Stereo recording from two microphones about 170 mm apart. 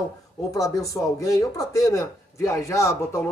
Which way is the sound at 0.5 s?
20° left (ahead or behind).